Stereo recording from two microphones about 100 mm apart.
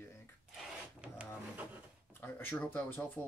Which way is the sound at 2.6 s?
15° left (ahead or behind).